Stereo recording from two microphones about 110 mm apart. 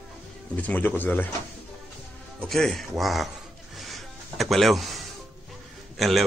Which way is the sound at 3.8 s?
Centre (ahead or behind).